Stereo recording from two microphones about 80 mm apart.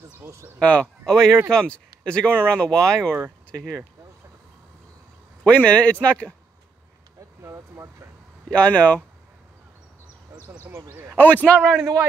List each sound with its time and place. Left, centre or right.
0.2 s speech: right
0.6 s a man's voice: centre
3.0 s speech: right
5.4 s a man's voice: centre
7.4 s speech: right
8.5 s a man's voice: centre
10.3 s a sound: right
10.8 s speech: right
11.1 s a man's voice: centre
11.8 s a man's voice: right